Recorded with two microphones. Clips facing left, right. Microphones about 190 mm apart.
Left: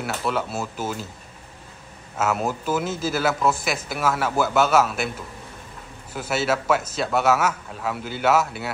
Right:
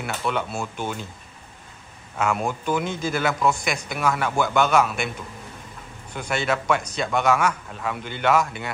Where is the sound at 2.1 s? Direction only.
5° left (ahead or behind).